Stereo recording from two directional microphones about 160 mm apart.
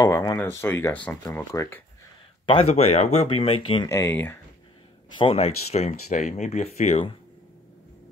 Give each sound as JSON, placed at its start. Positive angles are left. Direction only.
{"t": 0.0, "sound": "speech", "side_deg": 20}
{"t": 2.7, "sound": "speech", "side_deg": 40}
{"t": 3.9, "sound": "speech", "side_deg": 15}
{"t": 5.1, "sound": "speech", "side_deg": 35}